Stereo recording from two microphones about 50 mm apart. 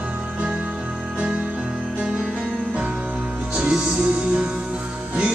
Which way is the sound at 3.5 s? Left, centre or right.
Centre.